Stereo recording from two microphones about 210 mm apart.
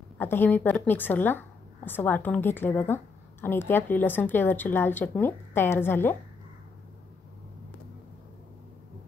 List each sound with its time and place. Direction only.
0.2 s a woman's voice: 10° left (ahead or behind)